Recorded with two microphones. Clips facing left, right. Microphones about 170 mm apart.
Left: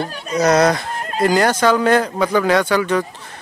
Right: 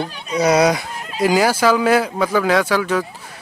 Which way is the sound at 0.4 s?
10° right (ahead or behind).